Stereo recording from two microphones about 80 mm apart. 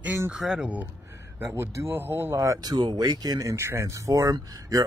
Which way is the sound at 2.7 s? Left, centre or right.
Right.